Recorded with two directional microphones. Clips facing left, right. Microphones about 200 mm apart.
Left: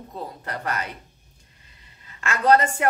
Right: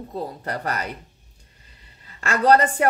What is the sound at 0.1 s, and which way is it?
Speech, 35° right (ahead or behind).